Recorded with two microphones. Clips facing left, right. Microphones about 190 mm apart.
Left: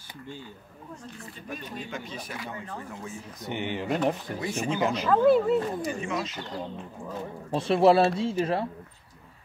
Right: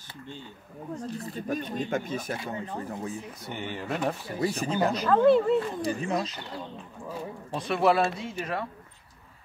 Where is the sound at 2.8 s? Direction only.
35° right (ahead or behind).